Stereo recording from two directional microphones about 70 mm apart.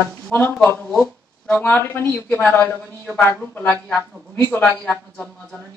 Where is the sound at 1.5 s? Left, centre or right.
Left.